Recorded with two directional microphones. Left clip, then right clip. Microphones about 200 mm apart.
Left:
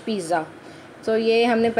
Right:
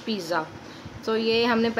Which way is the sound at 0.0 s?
10° left (ahead or behind).